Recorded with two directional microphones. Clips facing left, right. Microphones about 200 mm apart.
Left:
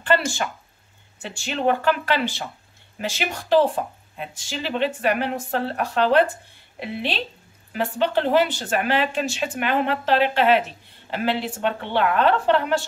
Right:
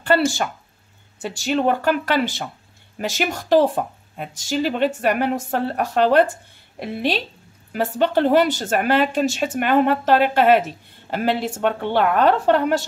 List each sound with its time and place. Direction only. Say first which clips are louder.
1.2 s speech: right 3 dB; 40° right (ahead or behind)